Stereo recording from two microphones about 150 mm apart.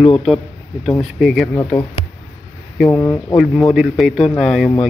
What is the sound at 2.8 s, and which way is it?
Speech, 20° left (ahead or behind).